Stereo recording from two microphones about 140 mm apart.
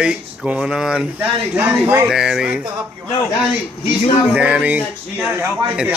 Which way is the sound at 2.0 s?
5° right (ahead or behind).